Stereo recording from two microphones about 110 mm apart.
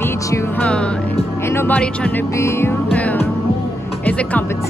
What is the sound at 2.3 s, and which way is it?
Music, 25° left (ahead or behind).